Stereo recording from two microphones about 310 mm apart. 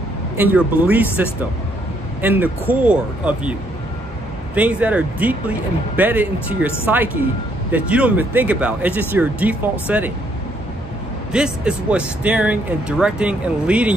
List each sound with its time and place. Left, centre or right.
0.4 s speech: centre
4.6 s speech: centre
7.7 s speech: centre
11.3 s speech: centre